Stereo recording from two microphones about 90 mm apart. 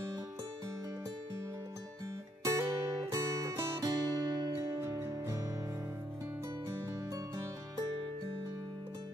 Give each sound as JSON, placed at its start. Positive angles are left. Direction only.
{"t": 2.4, "sound": "music", "side_deg": -35}
{"t": 4.6, "sound": "music", "side_deg": -30}